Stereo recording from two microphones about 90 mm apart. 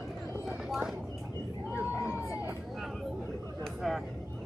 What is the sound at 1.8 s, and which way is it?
Crowd, 20° right (ahead or behind).